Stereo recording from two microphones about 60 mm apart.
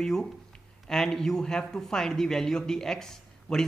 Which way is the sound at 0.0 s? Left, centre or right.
Centre.